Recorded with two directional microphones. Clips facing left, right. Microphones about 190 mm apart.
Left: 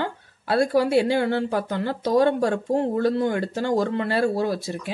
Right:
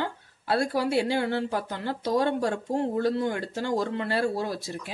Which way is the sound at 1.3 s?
90° left.